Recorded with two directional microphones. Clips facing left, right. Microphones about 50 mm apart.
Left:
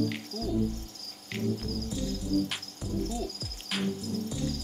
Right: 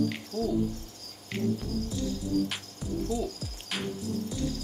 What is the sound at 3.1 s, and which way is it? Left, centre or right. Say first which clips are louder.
Speech: right 4 dB; centre.